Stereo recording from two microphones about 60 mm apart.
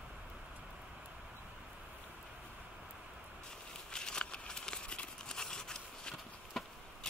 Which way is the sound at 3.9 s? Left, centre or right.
Centre.